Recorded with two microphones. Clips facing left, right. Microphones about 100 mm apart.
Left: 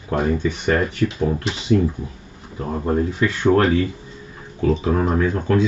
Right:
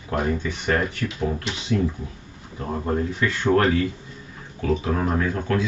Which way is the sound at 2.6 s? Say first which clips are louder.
Left 4 dB; 25° left (ahead or behind).